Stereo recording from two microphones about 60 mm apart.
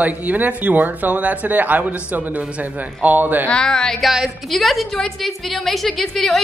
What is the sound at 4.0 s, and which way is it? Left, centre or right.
A woman's voice, centre.